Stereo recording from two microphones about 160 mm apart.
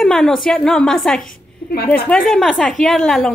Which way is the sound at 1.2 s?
75° left (ahead or behind).